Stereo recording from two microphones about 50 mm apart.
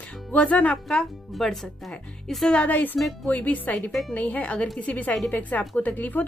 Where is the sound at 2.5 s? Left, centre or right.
Left.